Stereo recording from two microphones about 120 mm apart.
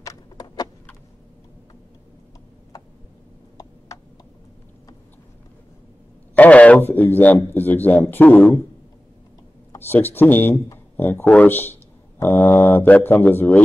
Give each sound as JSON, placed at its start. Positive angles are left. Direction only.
{"t": 0.0, "sound": "horse", "side_deg": 30}
{"t": 6.3, "sound": "a sound", "side_deg": 10}
{"t": 7.4, "sound": "a man's voice", "side_deg": 15}
{"t": 9.8, "sound": "a man's voice", "side_deg": 15}